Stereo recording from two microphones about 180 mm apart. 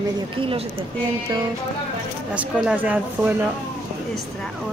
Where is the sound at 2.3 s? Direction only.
10° right (ahead or behind).